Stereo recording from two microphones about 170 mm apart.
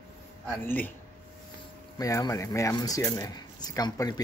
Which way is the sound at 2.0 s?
20° left (ahead or behind).